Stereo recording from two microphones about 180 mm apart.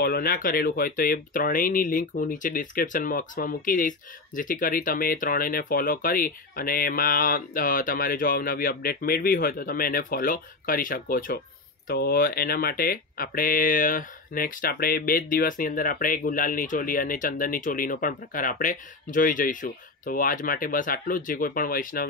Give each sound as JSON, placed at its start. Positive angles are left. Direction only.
{"t": 0.0, "sound": "speech", "side_deg": 55}